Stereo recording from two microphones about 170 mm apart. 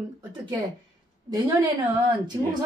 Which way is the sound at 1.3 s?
25° right (ahead or behind).